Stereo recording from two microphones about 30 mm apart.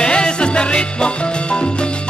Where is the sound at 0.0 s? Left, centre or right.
Left.